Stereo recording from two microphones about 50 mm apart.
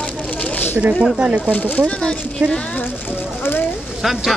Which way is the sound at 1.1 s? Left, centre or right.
Right.